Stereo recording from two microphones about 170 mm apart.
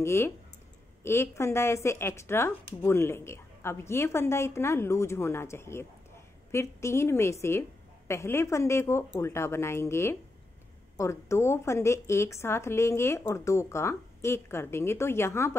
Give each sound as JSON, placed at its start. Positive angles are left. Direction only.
{"t": 0.0, "sound": "speech", "side_deg": 15}